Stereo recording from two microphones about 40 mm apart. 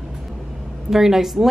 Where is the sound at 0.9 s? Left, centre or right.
Centre.